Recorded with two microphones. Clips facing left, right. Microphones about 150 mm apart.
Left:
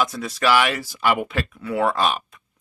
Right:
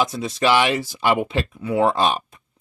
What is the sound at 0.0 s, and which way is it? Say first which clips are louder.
Speech: right 2 dB; 25° right (ahead or behind).